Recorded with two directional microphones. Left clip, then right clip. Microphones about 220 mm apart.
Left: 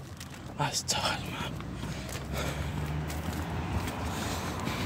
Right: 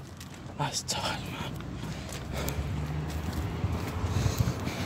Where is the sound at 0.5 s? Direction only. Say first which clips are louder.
Left 1 dB; 5° left (ahead or behind).